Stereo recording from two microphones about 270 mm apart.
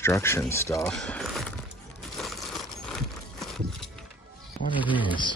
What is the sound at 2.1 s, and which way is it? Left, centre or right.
Coin, centre.